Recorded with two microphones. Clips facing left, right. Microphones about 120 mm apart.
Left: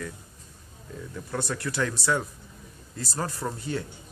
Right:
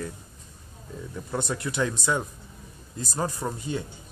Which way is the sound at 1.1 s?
20° right (ahead or behind).